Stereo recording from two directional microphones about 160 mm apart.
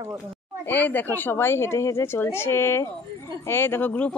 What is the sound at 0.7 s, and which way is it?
A woman's voice, 10° left (ahead or behind).